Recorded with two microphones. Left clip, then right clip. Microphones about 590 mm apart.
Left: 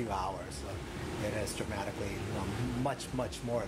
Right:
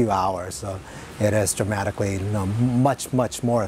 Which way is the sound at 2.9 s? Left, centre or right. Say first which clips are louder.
Right 13 dB; right.